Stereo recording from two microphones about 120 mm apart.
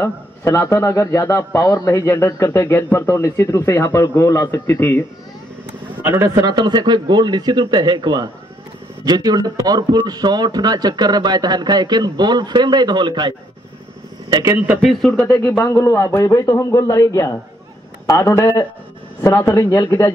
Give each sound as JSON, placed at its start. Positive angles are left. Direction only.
{"t": 0.0, "sound": "a man's voice", "side_deg": 20}
{"t": 6.0, "sound": "speech", "side_deg": -25}
{"t": 14.3, "sound": "a man's voice", "side_deg": -25}
{"t": 14.8, "sound": "speech", "side_deg": 0}
{"t": 15.2, "sound": "a man's voice", "side_deg": 20}